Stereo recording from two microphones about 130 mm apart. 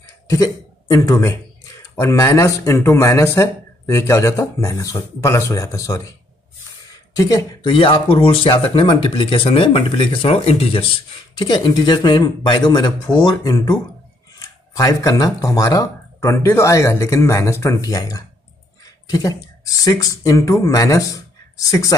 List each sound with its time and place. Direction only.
0.3 s speech: 25° left (ahead or behind)
7.2 s speech: 25° left (ahead or behind)
7.7 s speech: 40° left (ahead or behind); by 21.9 s 25° left (ahead or behind)